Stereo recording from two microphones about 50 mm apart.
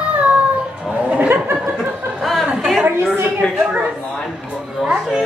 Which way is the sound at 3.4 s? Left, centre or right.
Left.